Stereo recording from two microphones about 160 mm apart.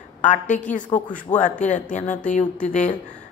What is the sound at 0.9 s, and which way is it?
Speech, 25° left (ahead or behind).